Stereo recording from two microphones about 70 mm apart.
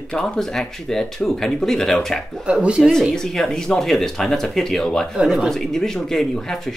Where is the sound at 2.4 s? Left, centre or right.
Centre.